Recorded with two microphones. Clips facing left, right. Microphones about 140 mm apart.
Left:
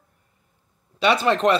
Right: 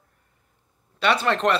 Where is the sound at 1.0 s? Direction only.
10° left (ahead or behind).